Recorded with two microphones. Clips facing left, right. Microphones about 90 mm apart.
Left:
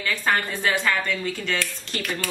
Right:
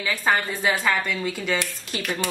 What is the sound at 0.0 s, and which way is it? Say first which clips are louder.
Speech: right 1 dB; 10° right (ahead or behind).